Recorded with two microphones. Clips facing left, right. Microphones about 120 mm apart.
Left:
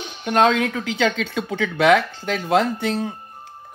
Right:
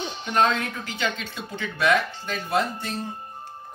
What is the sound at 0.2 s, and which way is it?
Speech, 65° left (ahead or behind).